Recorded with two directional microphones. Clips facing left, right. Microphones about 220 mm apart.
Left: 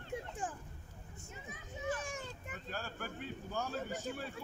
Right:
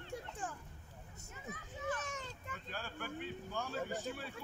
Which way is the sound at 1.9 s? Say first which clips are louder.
Left 2 dB; 10° left (ahead or behind).